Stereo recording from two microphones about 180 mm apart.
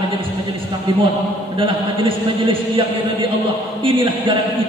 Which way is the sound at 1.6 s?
30° right (ahead or behind).